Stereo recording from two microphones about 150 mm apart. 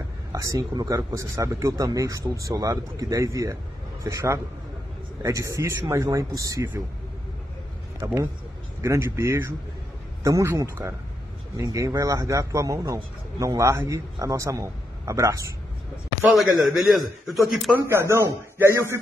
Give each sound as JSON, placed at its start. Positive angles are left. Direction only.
{"t": 0.3, "sound": "a man's voice", "side_deg": -20}
{"t": 8.0, "sound": "a man's voice", "side_deg": -15}
{"t": 16.2, "sound": "a man's voice", "side_deg": 0}
{"t": 17.7, "sound": "a man's voice", "side_deg": -15}